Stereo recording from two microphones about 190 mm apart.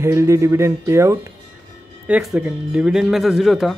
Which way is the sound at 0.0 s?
15° right (ahead or behind).